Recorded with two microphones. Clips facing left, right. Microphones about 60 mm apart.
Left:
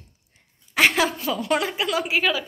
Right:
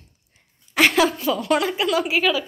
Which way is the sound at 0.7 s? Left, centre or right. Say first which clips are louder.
Right 2 dB; centre.